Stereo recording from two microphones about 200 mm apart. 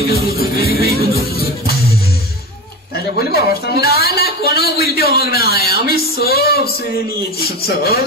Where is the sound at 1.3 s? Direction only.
50° left (ahead or behind).